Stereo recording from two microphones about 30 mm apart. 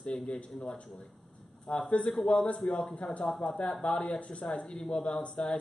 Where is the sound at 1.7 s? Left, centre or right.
Left.